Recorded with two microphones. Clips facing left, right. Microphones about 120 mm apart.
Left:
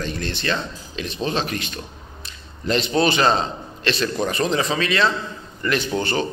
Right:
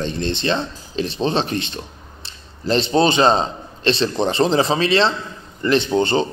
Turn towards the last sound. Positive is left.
turn(degrees=-25)  # may be behind; listen again after turning